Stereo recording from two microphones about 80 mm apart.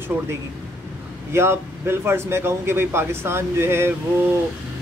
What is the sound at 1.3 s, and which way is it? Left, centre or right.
Speech, right.